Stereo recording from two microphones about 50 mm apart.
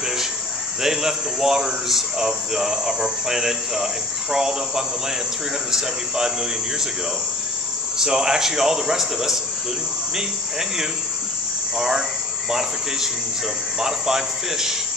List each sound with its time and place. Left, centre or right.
0.8 s speech: centre
8.0 s speech: centre
12.4 s speech: centre